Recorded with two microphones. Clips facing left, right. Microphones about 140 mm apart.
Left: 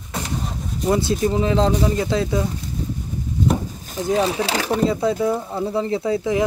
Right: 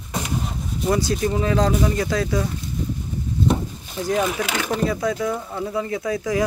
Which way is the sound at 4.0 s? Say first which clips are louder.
Left 2 dB; 30° left (ahead or behind).